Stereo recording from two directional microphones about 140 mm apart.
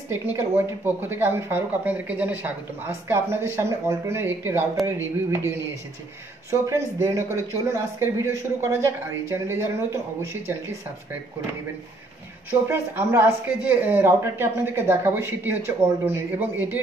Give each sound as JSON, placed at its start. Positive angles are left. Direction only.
{"t": 0.3, "sound": "speech", "side_deg": -15}
{"t": 6.5, "sound": "speech", "side_deg": -20}
{"t": 12.4, "sound": "speech", "side_deg": -15}